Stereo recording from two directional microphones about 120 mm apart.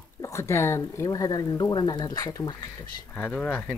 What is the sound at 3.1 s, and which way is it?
Speech, 15° left (ahead or behind).